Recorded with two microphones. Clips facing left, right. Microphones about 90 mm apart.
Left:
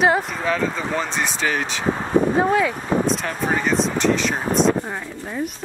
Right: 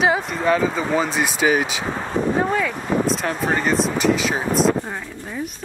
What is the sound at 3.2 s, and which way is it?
Speech, centre (ahead or behind).